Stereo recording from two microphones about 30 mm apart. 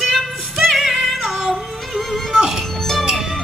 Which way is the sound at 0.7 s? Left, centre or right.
Centre.